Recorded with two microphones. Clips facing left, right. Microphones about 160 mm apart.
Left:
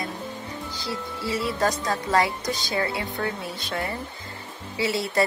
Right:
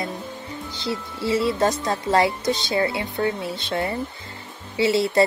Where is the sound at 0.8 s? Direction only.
25° right (ahead or behind).